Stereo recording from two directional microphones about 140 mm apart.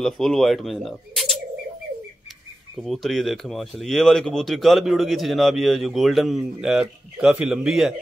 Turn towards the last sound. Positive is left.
turn(degrees=-5)  # may be behind; listen again after turning